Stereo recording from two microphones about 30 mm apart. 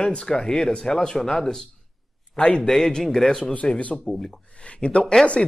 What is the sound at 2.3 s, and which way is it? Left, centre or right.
Speech, left.